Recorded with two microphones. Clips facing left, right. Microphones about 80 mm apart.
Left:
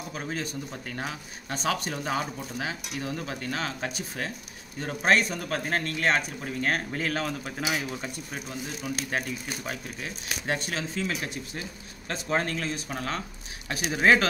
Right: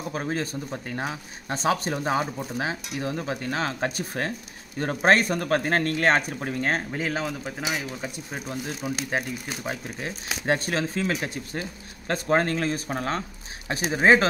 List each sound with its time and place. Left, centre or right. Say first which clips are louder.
0.1 s speech: right 5 dB; right
0.7 s speech: right 4 dB; right
6.9 s speech: right 1 dB; centre
7.2 s speech: right 1 dB; centre
8.8 s speech: right 2 dB; right